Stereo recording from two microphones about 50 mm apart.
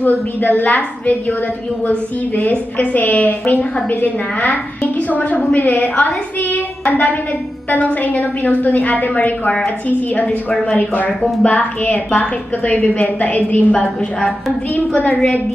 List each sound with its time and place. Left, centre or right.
0.0 s a woman's voice: left
2.5 s a woman's voice: left
11.4 s a woman's voice: left